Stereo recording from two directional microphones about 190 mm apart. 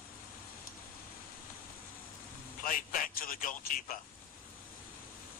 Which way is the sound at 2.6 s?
45° left (ahead or behind).